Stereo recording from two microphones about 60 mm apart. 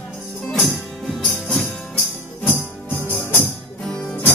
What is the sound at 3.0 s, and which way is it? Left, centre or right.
Music, left.